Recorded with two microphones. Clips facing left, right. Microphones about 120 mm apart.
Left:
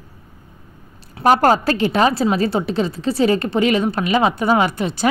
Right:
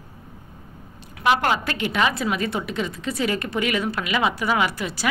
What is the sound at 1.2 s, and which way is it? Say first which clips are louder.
A woman's voice: left 7 dB; 40° left (ahead or behind).